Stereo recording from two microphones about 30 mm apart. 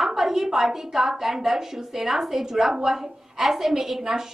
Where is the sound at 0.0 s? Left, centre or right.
Centre.